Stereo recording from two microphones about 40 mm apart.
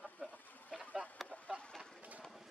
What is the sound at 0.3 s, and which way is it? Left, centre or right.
Chicken, left.